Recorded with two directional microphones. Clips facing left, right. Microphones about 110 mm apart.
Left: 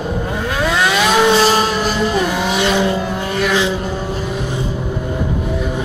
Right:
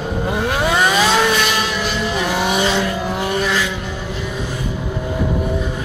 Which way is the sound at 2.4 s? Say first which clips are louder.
Left 2 dB; 5° right (ahead or behind).